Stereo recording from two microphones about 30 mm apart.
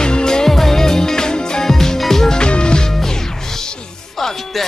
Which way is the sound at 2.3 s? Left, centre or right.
Left.